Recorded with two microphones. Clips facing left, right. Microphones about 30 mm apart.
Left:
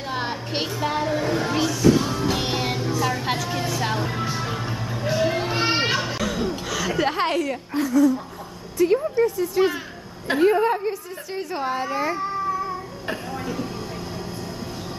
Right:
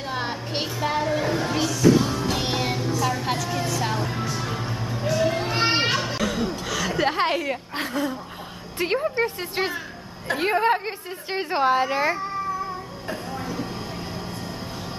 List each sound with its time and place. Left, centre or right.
0.1 s music: centre
5.5 s children playing: centre
6.7 s a sound: centre
7.7 s a woman's voice: right
11.9 s speech: right
13.3 s a sound: centre